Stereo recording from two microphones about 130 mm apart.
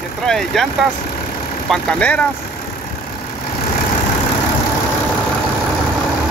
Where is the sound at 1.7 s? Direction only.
10° left (ahead or behind).